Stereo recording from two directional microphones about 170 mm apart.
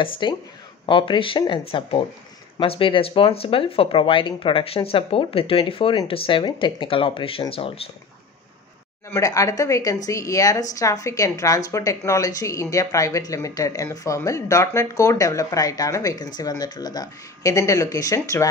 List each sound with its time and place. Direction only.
0.0 s a woman's voice: 25° left (ahead or behind)
9.1 s a woman's voice: 20° left (ahead or behind)